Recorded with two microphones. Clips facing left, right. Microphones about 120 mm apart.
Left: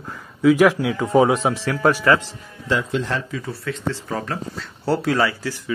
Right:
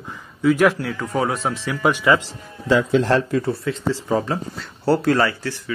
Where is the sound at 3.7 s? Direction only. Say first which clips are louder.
Right 4 dB; 20° right (ahead or behind).